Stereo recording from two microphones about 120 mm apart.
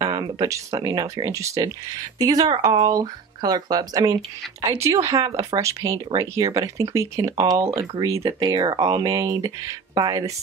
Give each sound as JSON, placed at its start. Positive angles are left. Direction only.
{"t": 0.0, "sound": "speech", "side_deg": -35}